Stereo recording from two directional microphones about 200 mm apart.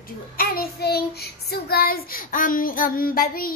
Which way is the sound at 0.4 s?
50° left (ahead or behind).